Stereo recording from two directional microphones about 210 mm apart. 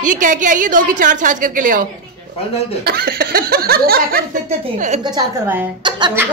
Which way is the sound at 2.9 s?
45° right (ahead or behind).